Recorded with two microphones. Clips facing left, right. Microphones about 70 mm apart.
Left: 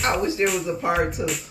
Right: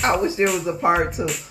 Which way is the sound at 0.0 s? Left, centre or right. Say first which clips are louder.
Right 3 dB; centre.